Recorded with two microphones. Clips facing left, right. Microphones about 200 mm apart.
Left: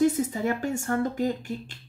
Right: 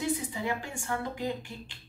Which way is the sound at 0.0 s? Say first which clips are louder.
Left 9 dB; 45° left (ahead or behind).